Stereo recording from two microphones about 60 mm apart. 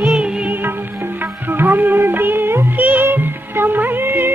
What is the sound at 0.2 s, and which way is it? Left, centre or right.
Music, centre.